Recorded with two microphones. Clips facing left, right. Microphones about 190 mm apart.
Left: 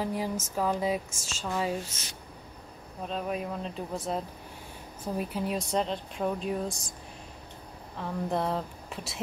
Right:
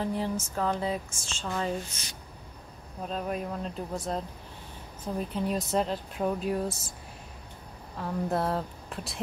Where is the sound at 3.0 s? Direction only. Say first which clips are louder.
Even; centre (ahead or behind).